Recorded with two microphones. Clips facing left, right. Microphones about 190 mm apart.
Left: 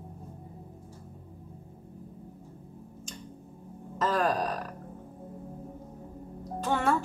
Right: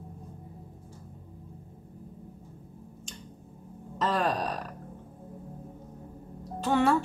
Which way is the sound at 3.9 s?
Centre (ahead or behind).